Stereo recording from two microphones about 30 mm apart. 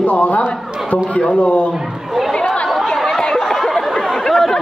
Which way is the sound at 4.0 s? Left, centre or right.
Centre.